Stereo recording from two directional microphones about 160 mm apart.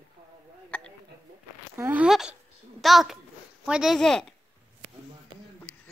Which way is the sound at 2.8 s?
Centre (ahead or behind).